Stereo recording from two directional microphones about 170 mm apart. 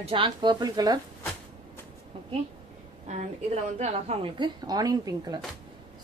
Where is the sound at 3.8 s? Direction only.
35° right (ahead or behind).